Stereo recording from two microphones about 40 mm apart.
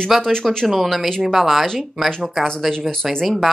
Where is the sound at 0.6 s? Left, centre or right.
Centre.